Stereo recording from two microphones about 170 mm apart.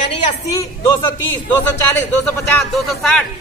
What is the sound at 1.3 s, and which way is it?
Speech, 10° left (ahead or behind).